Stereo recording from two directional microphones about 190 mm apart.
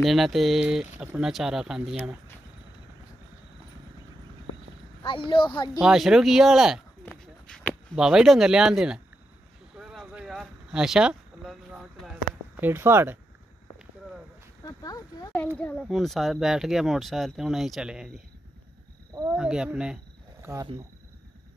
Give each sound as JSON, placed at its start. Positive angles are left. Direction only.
{"t": 0.0, "sound": "a child's voice", "side_deg": 0}
{"t": 5.0, "sound": "speech", "side_deg": 25}
{"t": 5.8, "sound": "a child's voice", "side_deg": 0}
{"t": 9.8, "sound": "a sound", "side_deg": -5}
{"t": 14.6, "sound": "a sound", "side_deg": 20}
{"t": 15.3, "sound": "a child's voice", "side_deg": 5}
{"t": 19.3, "sound": "a child's voice", "side_deg": -5}